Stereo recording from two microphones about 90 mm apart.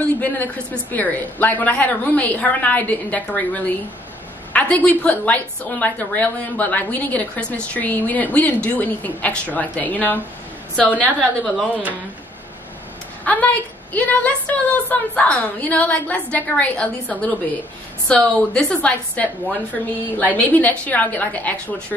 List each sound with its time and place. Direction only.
0.9 s a woman's voice: 20° left (ahead or behind)
11.1 s a woman's voice: 5° left (ahead or behind)
13.2 s a woman's voice: 15° left (ahead or behind)